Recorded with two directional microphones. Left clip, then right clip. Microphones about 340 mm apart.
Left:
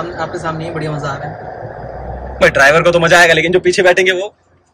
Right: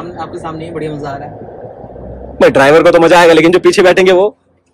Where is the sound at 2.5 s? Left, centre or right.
Centre.